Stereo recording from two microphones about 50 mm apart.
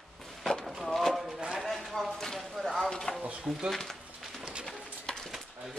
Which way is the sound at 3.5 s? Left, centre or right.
Right.